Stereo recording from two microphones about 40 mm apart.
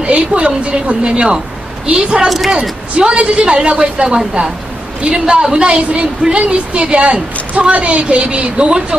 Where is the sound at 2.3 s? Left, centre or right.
Centre.